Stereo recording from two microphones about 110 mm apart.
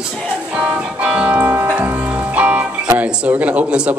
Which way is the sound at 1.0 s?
10° right (ahead or behind).